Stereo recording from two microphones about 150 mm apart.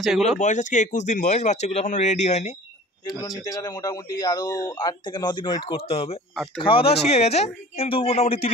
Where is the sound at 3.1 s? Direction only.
25° left (ahead or behind); by 6.1 s 40° left (ahead or behind).